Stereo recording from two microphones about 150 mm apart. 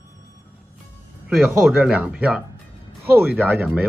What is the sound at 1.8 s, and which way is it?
Speech, 10° right (ahead or behind).